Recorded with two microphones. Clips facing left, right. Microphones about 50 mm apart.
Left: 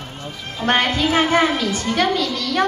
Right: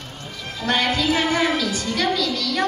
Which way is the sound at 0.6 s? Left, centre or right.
Left.